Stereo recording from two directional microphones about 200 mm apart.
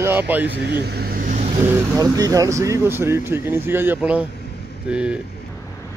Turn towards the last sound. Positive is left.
turn(degrees=-5)  # may be behind; listen again after turning